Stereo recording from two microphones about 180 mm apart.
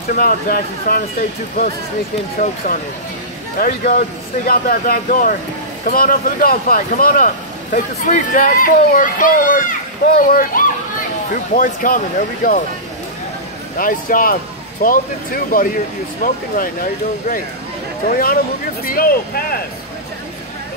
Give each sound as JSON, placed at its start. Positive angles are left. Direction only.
{"t": 0.1, "sound": "speech", "side_deg": 55}
{"t": 3.5, "sound": "speech", "side_deg": 55}
{"t": 13.7, "sound": "speech", "side_deg": 50}